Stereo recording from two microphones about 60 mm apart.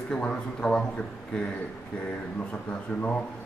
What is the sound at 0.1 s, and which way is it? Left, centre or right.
Speech, centre.